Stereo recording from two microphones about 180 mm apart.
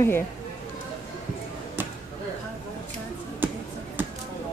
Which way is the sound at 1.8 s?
10° right (ahead or behind).